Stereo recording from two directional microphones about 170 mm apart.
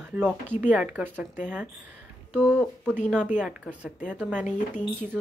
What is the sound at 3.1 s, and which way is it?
A woman's voice, 10° right (ahead or behind).